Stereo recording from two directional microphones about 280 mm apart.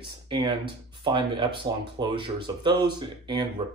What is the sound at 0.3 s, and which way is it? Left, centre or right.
Speech, centre.